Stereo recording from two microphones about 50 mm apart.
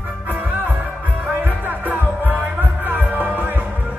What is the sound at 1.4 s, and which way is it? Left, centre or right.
Music, right.